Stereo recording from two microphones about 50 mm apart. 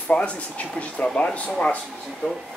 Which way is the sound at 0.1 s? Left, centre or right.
Left.